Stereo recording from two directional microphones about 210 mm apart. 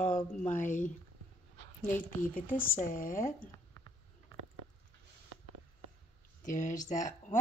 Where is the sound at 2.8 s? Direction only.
40° left (ahead or behind).